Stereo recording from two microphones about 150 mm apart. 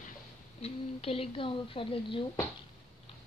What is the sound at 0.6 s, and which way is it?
A woman's voice, 40° left (ahead or behind).